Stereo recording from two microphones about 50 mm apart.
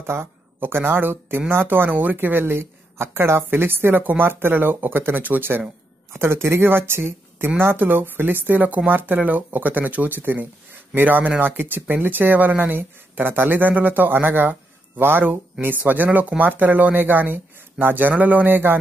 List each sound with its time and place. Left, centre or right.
0.0 s speech: right
6.1 s speech: right